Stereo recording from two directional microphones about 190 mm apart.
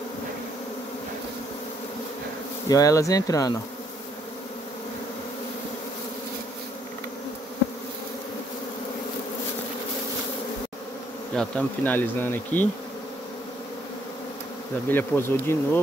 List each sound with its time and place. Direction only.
2.7 s speech: 15° left (ahead or behind)
11.3 s speech: 5° left (ahead or behind)
14.9 s speech: 10° left (ahead or behind)